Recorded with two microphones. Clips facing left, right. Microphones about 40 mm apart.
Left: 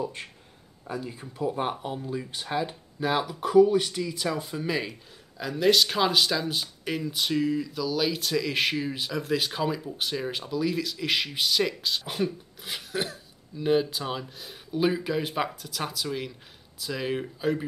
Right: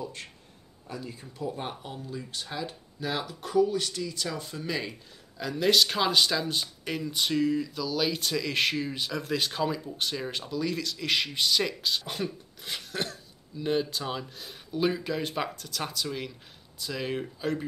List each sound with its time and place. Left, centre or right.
0.0 s a man's voice: centre